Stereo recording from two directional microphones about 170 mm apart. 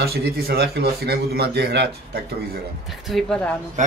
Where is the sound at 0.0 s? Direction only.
70° right (ahead or behind).